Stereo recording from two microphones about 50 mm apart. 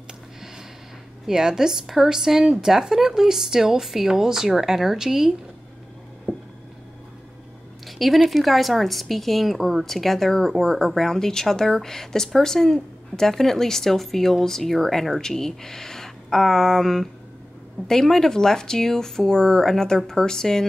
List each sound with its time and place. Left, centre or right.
1.2 s a woman's voice: centre
6.3 s a sound: right
7.8 s a woman's voice: centre